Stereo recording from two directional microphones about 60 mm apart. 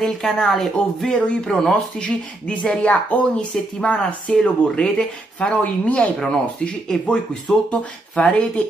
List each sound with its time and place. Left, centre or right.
0.0 s speech: centre; by 6.1 s left
6.1 s speech: centre